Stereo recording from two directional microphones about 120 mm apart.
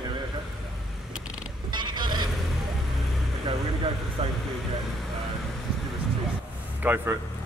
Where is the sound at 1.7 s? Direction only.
40° right (ahead or behind).